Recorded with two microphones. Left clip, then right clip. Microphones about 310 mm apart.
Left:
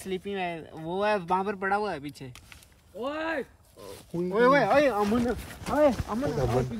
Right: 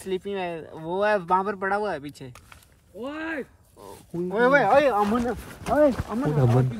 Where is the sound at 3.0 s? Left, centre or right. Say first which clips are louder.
Left 1 dB; left.